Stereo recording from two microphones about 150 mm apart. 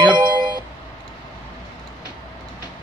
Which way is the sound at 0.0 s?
30° right (ahead or behind).